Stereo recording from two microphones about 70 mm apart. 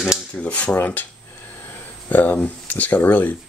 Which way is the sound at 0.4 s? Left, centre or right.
Centre.